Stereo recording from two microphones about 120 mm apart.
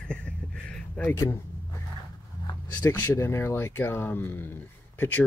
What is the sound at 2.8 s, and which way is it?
Speech, 20° left (ahead or behind).